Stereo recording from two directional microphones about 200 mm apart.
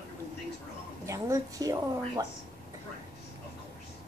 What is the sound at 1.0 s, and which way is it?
Speech, 15° right (ahead or behind).